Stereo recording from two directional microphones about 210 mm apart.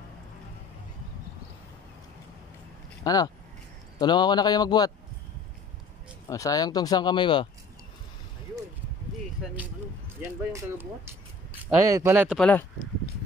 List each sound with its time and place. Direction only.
3.0 s a man's voice: 15° left (ahead or behind)
6.2 s speech: 15° left (ahead or behind)
10.2 s speech: 10° right (ahead or behind)
12.4 s speech: 5° left (ahead or behind)